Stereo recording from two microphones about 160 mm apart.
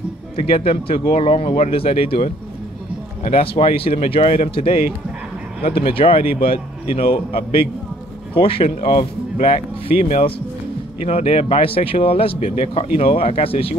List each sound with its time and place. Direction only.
0.4 s speech: 35° left (ahead or behind)
3.3 s speech: 35° left (ahead or behind)